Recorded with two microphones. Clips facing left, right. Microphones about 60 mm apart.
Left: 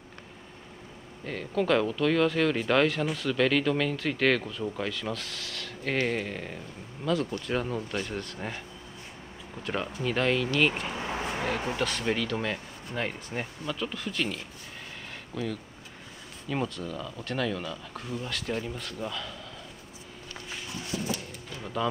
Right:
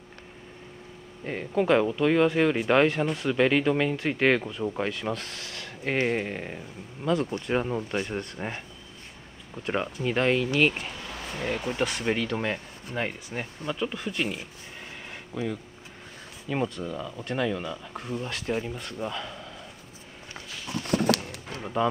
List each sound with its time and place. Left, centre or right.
1.2 s speech: right
10.0 s speech: centre
10.9 s a sound: left
11.8 s speech: centre
20.8 s a sound: right
21.5 s speech: right